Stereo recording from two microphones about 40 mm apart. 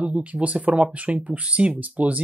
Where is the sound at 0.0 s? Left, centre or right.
Right.